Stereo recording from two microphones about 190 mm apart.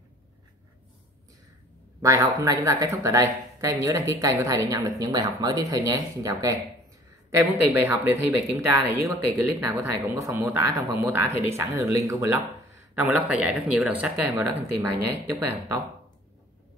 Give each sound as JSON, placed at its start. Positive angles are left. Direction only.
{"t": 2.0, "sound": "speech", "side_deg": -15}